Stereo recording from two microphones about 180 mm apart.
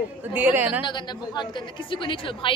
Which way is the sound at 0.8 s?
25° left (ahead or behind).